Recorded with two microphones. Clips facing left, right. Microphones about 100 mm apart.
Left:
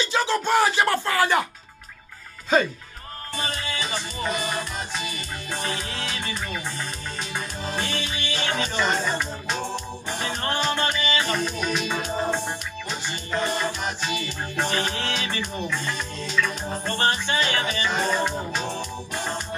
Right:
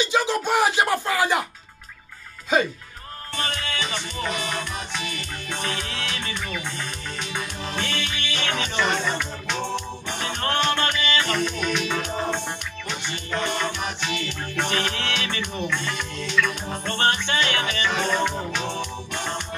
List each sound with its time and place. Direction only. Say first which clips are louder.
0.0 s speech: right 1 dB; 15° right (ahead or behind)
3.5 s music: even; 60° right (ahead or behind)